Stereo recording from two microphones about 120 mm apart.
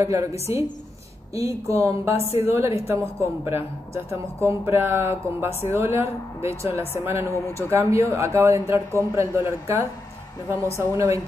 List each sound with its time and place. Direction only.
0.0 s a man's voice: 25° right (ahead or behind)
1.7 s a man's voice: 25° right (ahead or behind)